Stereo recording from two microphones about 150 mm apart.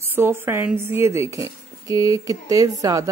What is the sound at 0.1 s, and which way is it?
A woman's voice, 15° right (ahead or behind).